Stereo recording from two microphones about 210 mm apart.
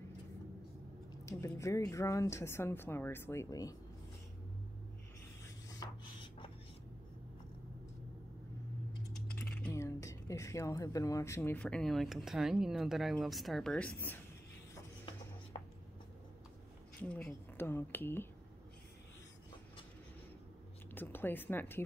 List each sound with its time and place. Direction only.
1.2 s a woman's voice: 15° left (ahead or behind)
5.7 s rub: 20° left (ahead or behind)
9.1 s speech: 5° left (ahead or behind)
17.0 s a woman's voice: 5° left (ahead or behind)
20.9 s speech: 10° left (ahead or behind)